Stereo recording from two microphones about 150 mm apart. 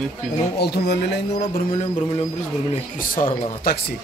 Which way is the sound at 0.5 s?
90° left.